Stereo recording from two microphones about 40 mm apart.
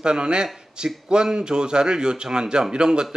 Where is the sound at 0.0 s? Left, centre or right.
Right.